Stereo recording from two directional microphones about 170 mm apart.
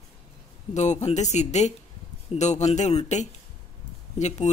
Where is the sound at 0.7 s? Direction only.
40° left (ahead or behind).